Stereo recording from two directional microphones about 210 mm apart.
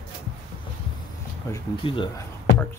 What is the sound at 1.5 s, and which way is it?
Speech, 20° left (ahead or behind).